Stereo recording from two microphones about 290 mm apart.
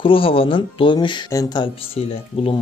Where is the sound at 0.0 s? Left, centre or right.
Centre.